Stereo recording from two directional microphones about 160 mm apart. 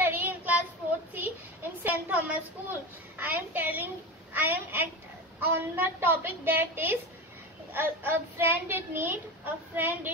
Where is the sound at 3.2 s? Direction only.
10° right (ahead or behind).